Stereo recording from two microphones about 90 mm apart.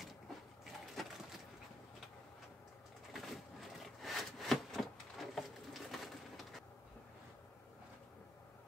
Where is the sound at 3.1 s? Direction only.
Centre (ahead or behind).